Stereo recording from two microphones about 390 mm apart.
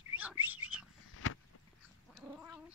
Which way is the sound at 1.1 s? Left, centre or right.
Left.